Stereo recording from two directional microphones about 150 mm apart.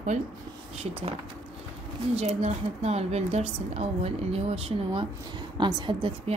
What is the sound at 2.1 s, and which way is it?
A woman's voice, 45° right (ahead or behind).